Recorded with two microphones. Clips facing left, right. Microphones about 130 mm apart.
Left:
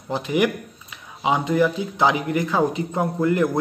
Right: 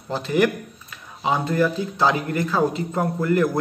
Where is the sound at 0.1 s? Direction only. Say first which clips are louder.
Right 1 dB; 15° left (ahead or behind).